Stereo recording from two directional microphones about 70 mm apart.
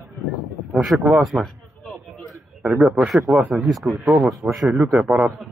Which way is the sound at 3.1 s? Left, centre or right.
Centre.